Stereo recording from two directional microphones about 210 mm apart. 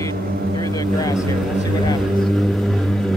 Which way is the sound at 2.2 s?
Centre (ahead or behind).